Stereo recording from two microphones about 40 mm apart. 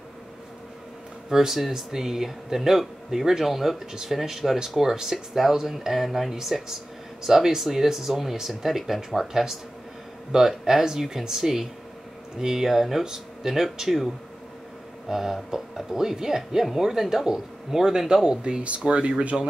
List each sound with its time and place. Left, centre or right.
1.3 s speech: centre; by 19.4 s right